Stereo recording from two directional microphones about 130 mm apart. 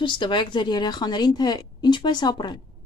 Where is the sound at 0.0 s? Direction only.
35° left (ahead or behind).